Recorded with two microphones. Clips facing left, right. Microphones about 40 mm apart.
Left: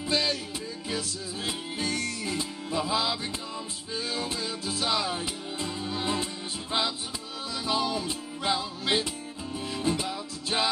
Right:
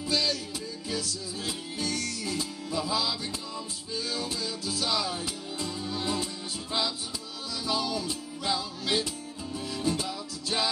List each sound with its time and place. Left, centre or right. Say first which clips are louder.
0.1 s music: left 1 dB; left